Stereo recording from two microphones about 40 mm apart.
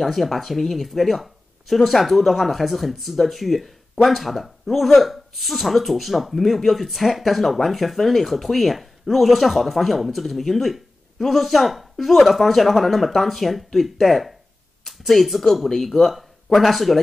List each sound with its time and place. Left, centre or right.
0.0 s speech: centre